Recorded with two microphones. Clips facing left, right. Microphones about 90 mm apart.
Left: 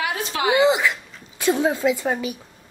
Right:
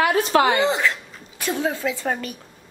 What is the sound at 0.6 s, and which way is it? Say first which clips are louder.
A woman's voice: left 3 dB; 15° left (ahead or behind).